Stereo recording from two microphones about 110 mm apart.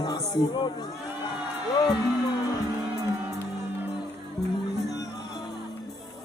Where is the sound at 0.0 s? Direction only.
40° left (ahead or behind).